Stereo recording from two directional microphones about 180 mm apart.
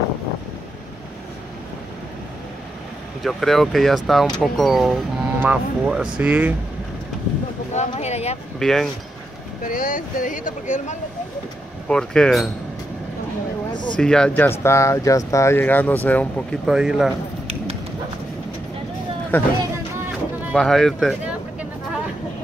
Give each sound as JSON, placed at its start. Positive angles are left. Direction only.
{"t": 3.3, "sound": "speech", "side_deg": 0}
{"t": 7.7, "sound": "speech", "side_deg": 40}
{"t": 8.5, "sound": "speech", "side_deg": 5}
{"t": 9.6, "sound": "speech", "side_deg": 50}
{"t": 11.9, "sound": "speech", "side_deg": 5}
{"t": 13.7, "sound": "a sound", "side_deg": 25}
{"t": 13.9, "sound": "speech", "side_deg": 5}
{"t": 16.6, "sound": "speech", "side_deg": -5}
{"t": 19.3, "sound": "speech", "side_deg": 10}
{"t": 20.5, "sound": "speech", "side_deg": 0}